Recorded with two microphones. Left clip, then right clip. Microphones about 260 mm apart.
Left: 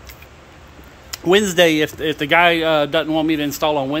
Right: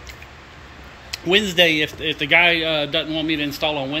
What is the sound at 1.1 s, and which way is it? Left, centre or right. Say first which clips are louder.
A man's voice: left 3 dB; centre.